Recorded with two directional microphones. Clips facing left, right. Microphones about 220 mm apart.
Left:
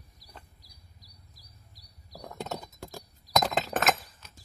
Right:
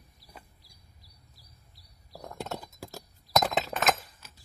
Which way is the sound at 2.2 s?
Centre (ahead or behind).